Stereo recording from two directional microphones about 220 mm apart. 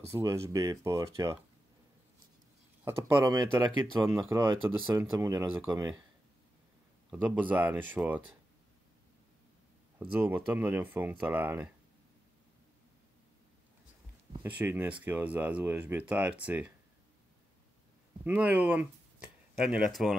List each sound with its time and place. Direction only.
0.1 s speech: 15° right (ahead or behind)
2.8 s speech: 15° right (ahead or behind)
7.1 s speech: 5° right (ahead or behind)
10.1 s speech: 10° right (ahead or behind)
14.4 s speech: 10° right (ahead or behind)
18.2 s speech: 10° right (ahead or behind)